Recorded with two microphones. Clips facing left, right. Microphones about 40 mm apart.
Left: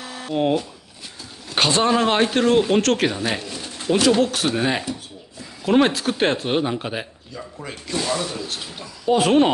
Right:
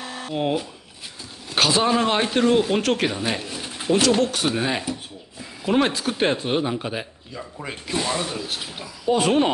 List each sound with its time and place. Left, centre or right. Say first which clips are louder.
0.0 s a sound: right 1 dB; right
0.3 s speech: left 4 dB; centre
4.2 s speech: left 2 dB; centre
5.7 s speech: left 3 dB; centre
7.3 s speech: right 1 dB; centre
9.0 s speech: left 3 dB; centre